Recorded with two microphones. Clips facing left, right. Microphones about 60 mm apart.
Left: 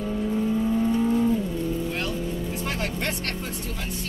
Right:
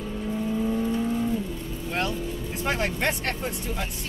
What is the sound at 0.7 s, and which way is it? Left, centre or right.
Vehicle, centre.